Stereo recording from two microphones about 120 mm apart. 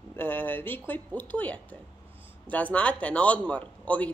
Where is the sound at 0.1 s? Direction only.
15° left (ahead or behind).